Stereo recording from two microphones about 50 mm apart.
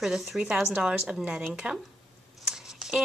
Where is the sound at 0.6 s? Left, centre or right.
Centre.